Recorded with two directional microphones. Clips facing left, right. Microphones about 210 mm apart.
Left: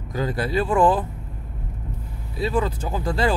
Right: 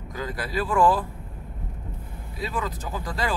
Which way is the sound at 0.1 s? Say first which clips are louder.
Left 7 dB; 30° left (ahead or behind).